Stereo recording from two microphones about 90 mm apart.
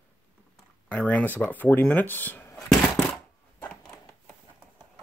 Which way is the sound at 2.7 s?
5° left (ahead or behind).